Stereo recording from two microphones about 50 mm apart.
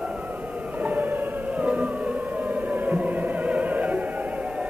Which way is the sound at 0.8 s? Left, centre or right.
Right.